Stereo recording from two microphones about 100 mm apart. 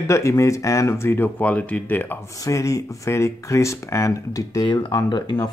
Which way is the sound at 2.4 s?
35° left (ahead or behind).